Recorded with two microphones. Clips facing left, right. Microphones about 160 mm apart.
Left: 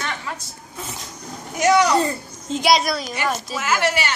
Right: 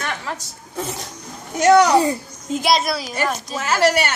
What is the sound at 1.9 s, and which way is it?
Speech, 10° right (ahead or behind).